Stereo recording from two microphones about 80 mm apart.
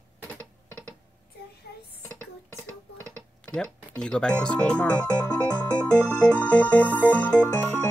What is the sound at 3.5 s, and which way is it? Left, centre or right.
Speech, centre.